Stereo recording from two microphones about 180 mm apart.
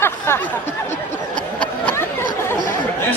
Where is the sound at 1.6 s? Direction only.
10° left (ahead or behind).